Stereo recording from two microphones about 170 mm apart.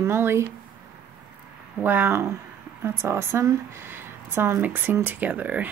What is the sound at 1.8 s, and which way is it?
Speech, 10° right (ahead or behind).